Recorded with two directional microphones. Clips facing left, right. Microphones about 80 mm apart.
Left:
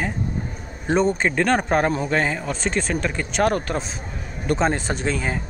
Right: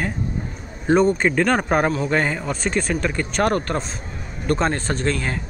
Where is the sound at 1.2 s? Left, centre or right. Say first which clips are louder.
Right 1 dB; centre.